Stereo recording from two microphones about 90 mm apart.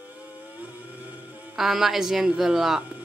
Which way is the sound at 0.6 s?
20° right (ahead or behind).